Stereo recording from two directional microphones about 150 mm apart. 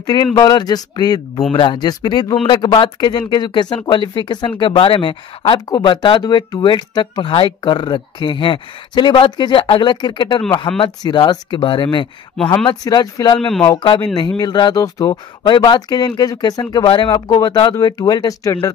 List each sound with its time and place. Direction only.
0.0 s speech: 25° left (ahead or behind)